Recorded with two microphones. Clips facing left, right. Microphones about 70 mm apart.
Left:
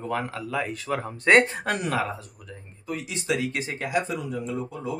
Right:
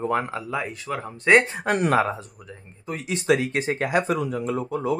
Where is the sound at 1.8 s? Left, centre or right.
Right.